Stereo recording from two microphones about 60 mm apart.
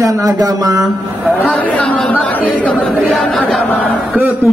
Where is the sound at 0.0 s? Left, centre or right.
Right.